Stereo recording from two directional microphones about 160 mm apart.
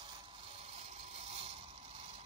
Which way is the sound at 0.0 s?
30° right (ahead or behind).